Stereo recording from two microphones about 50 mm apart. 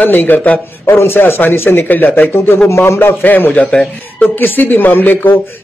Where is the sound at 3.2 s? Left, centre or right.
Left.